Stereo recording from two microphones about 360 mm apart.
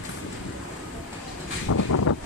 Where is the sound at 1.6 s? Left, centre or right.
Left.